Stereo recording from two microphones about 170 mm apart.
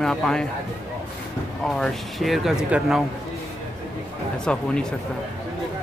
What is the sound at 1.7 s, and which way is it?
A man's voice, centre (ahead or behind).